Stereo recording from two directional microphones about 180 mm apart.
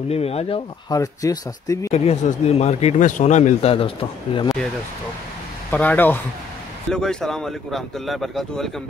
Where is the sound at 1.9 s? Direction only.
35° left (ahead or behind).